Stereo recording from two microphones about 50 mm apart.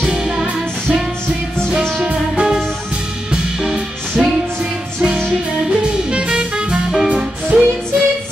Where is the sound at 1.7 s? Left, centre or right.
Centre.